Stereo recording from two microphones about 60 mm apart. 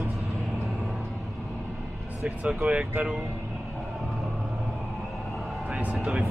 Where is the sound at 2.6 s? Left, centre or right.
Right.